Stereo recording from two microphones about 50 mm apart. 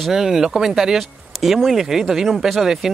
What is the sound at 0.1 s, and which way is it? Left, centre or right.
Speech, centre.